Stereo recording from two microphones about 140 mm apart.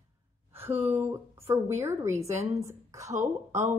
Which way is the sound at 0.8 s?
10° right (ahead or behind).